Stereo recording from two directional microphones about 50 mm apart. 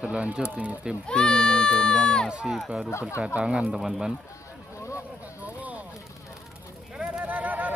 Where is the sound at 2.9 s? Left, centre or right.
Left.